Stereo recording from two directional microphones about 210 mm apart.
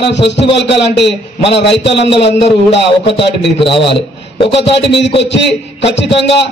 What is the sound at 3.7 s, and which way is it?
Speech, 25° left (ahead or behind).